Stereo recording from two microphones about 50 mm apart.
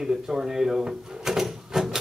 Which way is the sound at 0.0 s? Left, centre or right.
Centre.